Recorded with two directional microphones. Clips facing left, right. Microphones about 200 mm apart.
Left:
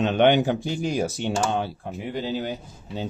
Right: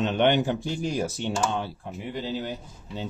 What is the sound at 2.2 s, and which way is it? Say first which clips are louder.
Speech: left 3 dB; 45° left (ahead or behind).